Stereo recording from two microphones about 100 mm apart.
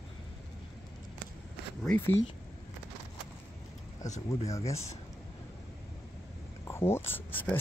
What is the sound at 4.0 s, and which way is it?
Speech, 35° left (ahead or behind).